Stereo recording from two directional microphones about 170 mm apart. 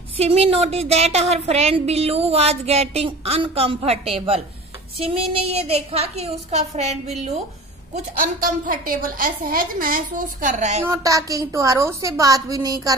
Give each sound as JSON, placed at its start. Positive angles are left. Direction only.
{"t": 0.2, "sound": "a woman's voice", "side_deg": -35}
{"t": 7.9, "sound": "a woman's voice", "side_deg": -55}
{"t": 10.9, "sound": "a woman's voice", "side_deg": -20}